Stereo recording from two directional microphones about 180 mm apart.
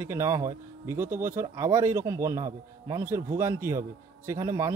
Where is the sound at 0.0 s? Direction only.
15° right (ahead or behind).